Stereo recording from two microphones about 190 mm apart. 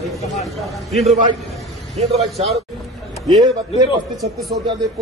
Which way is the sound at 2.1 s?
35° right (ahead or behind).